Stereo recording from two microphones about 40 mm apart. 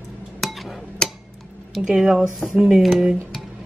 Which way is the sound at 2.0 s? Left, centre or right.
Centre.